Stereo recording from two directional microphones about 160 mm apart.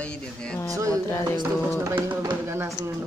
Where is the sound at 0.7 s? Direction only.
20° right (ahead or behind).